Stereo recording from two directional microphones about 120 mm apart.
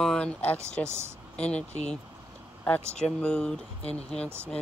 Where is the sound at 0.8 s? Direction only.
20° right (ahead or behind).